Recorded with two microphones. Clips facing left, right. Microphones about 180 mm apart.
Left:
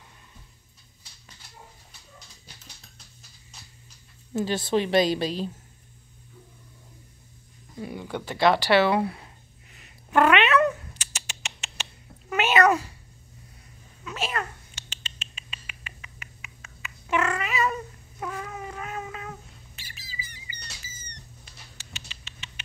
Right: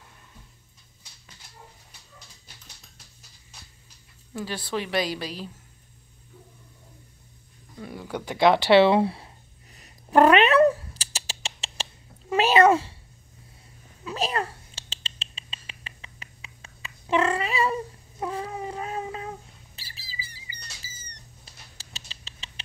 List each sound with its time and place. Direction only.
4.3 s a woman's voice: 25° left (ahead or behind)
7.8 s speech: centre (ahead or behind)
8.3 s speech: 20° right (ahead or behind)
9.8 s cat: 35° right (ahead or behind)
14.0 s a sound: 35° right (ahead or behind)
20.8 s cat: 30° right (ahead or behind)
21.5 s rodents: 35° right (ahead or behind)